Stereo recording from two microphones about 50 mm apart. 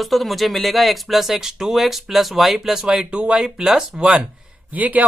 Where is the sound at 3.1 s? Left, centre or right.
Right.